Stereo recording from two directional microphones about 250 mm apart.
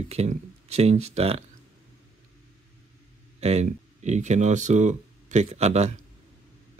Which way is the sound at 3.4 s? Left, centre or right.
Right.